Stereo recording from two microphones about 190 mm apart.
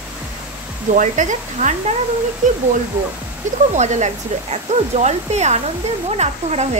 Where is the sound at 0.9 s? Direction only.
40° right (ahead or behind).